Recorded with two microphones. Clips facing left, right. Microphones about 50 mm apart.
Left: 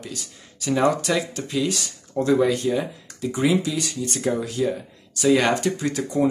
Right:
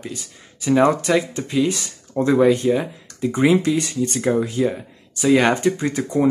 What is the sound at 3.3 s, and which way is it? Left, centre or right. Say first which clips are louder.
Speech: right 5 dB; right.